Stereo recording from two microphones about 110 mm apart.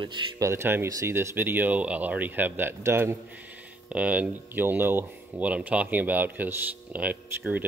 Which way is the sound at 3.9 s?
15° right (ahead or behind).